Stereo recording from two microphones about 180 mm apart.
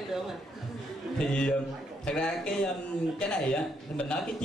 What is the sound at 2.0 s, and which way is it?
A man's voice, 5° left (ahead or behind).